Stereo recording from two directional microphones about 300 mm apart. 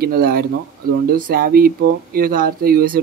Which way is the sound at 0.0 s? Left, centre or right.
Right.